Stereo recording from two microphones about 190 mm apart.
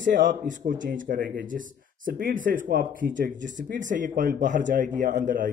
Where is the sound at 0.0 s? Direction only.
45° right (ahead or behind).